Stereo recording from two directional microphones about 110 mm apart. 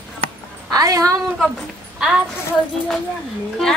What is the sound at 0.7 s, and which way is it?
Speech, 30° right (ahead or behind).